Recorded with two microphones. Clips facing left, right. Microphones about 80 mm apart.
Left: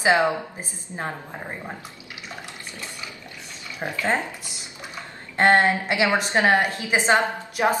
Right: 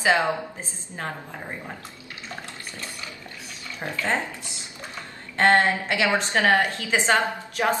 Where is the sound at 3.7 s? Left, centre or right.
Centre.